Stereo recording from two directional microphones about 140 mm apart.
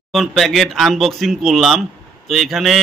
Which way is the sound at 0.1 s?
Centre (ahead or behind).